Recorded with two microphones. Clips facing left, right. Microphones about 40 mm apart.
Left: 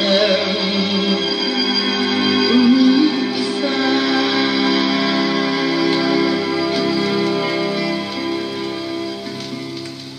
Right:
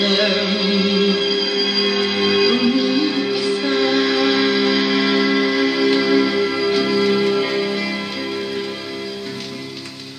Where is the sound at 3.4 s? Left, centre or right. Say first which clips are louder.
Even; right.